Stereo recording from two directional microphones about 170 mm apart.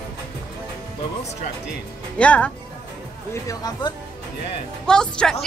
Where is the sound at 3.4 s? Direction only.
20° left (ahead or behind).